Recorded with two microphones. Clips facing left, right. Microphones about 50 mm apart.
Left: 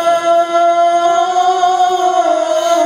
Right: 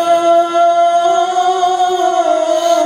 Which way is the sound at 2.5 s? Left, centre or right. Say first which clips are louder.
Right 1 dB; left.